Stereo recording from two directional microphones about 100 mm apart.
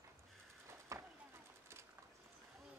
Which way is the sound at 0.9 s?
30° right (ahead or behind).